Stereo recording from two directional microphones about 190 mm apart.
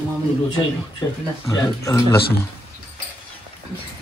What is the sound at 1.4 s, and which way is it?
Speech, 15° left (ahead or behind).